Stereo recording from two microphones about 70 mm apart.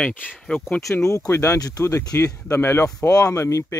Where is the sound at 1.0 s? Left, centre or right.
Left.